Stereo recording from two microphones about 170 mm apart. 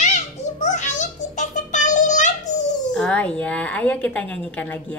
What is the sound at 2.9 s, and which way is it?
Music, 5° left (ahead or behind).